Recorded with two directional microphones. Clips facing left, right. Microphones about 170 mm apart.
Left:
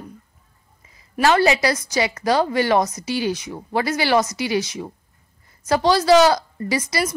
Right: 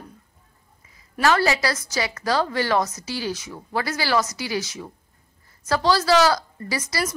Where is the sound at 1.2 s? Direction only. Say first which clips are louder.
Left 4 dB; 20° left (ahead or behind).